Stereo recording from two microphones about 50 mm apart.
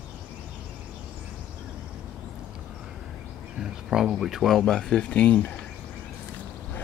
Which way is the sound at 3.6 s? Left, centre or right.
Centre.